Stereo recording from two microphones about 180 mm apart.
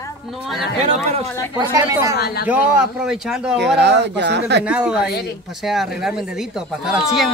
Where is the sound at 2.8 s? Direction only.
5° right (ahead or behind).